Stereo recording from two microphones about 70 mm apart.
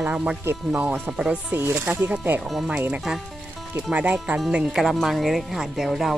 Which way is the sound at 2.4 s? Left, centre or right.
Centre.